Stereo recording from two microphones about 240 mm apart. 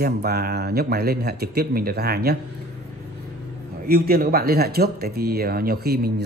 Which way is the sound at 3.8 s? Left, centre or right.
Right.